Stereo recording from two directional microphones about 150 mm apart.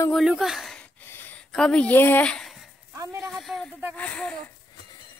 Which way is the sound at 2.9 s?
20° right (ahead or behind).